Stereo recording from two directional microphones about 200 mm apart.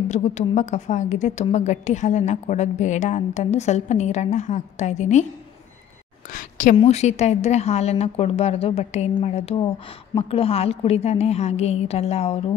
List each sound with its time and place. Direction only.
0.1 s a woman's voice: 35° left (ahead or behind)
6.3 s a woman's voice: 40° left (ahead or behind)